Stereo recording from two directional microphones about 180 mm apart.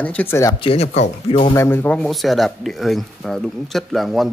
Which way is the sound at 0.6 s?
35° left (ahead or behind).